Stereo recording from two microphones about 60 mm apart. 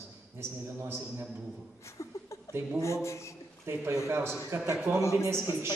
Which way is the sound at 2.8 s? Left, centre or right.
Left.